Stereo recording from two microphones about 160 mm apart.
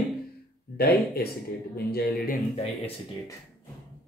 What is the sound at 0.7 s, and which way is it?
Speech, 75° left (ahead or behind).